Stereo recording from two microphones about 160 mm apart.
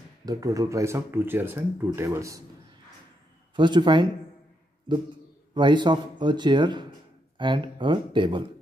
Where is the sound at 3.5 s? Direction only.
30° right (ahead or behind).